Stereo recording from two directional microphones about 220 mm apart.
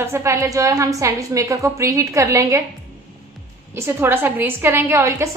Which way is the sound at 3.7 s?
10° right (ahead or behind).